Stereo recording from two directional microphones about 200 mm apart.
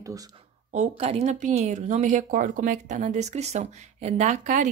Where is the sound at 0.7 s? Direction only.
30° right (ahead or behind).